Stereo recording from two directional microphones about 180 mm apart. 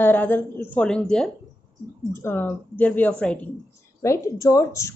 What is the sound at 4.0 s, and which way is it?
Speech, 15° left (ahead or behind).